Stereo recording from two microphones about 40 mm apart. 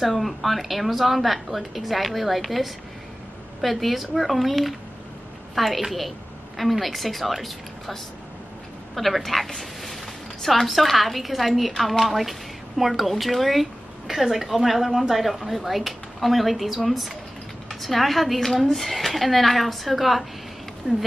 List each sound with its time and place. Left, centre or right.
0.0 s a woman's voice: centre
20.9 s speech: centre